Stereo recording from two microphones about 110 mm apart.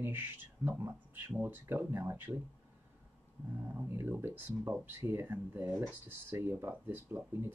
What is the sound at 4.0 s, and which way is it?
Speech, 20° right (ahead or behind).